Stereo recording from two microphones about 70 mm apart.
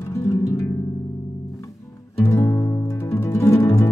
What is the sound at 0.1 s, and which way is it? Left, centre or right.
Music, left.